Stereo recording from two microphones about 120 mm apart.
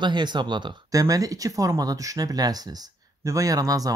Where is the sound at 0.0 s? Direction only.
40° right (ahead or behind).